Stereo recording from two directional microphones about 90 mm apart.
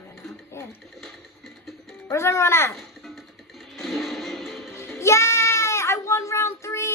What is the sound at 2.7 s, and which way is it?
Music, centre (ahead or behind).